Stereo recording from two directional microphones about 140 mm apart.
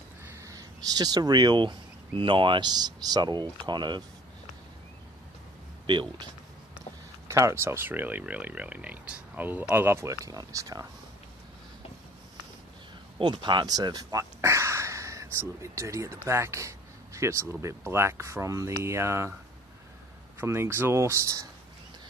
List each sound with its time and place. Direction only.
0.4 s speech: 25° right (ahead or behind)
5.9 s speech: 35° right (ahead or behind)
7.2 s speech: 20° right (ahead or behind)
13.2 s speech: 35° right (ahead or behind); by 19.3 s 20° right (ahead or behind)
20.3 s speech: 20° right (ahead or behind)